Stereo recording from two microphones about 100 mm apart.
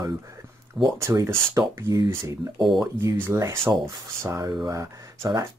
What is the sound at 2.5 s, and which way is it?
Speech, centre (ahead or behind).